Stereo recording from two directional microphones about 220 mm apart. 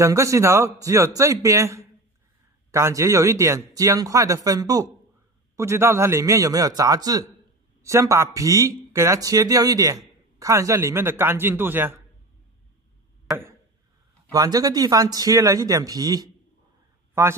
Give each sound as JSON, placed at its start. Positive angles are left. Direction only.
{"t": 0.0, "sound": "speech", "side_deg": -15}
{"t": 13.3, "sound": "chop", "side_deg": -10}
{"t": 14.3, "sound": "speech", "side_deg": -15}